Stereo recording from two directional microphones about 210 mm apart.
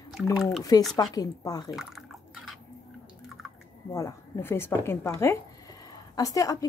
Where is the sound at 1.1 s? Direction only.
15° left (ahead or behind).